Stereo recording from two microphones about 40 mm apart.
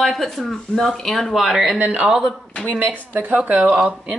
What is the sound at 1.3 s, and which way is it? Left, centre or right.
Speech, centre.